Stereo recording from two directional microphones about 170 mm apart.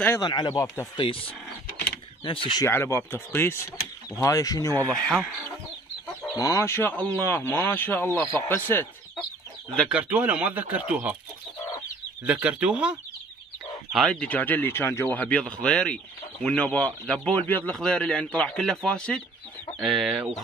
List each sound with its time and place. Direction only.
0.2 s speech: 25° left (ahead or behind)
2.6 s speech: 15° left (ahead or behind)
4.9 s a man's voice: 5° left (ahead or behind)
6.3 s speech: 20° left (ahead or behind)
9.8 s speech: 10° right (ahead or behind)
12.3 s speech: 10° right (ahead or behind)
13.9 s a man's voice: 5° left (ahead or behind)